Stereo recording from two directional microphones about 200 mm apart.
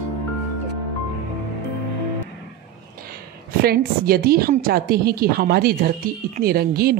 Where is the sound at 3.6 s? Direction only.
50° right (ahead or behind).